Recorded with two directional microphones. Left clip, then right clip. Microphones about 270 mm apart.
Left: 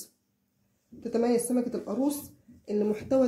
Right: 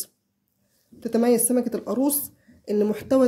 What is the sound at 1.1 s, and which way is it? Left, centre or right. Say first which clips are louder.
Speech: right 6 dB; right.